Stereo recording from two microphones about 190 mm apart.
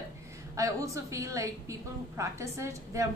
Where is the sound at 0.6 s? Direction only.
15° right (ahead or behind).